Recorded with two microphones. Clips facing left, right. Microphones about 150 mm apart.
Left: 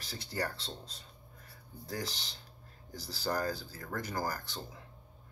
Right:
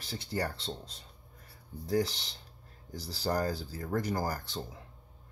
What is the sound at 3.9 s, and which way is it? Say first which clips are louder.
Speech: right 4 dB; 20° right (ahead or behind).